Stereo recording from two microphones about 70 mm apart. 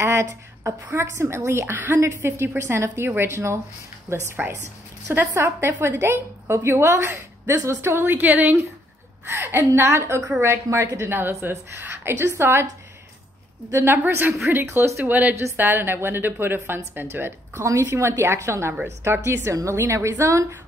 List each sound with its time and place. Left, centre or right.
0.0 s a sound: right
0.9 s a woman's voice: right
13.7 s a woman's voice: right
17.6 s a woman's voice: right